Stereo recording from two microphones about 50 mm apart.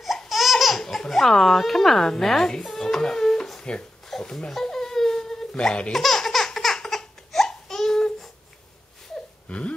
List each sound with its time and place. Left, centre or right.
0.3 s babbling: centre
4.1 s baby cry: centre
5.9 s laughter: centre
9.5 s wail: left